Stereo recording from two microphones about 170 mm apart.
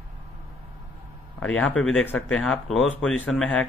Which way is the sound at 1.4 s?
5° left (ahead or behind).